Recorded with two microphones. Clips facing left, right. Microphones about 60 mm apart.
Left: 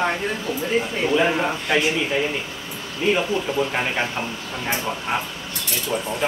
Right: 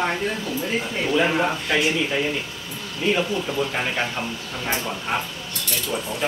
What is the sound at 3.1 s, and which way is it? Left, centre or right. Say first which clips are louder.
Speech: left 2 dB; centre.